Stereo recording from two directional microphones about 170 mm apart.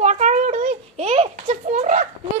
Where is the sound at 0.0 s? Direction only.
45° right (ahead or behind).